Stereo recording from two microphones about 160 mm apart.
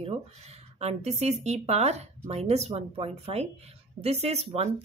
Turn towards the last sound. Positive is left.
turn(degrees=-40)  # may be behind; listen again after turning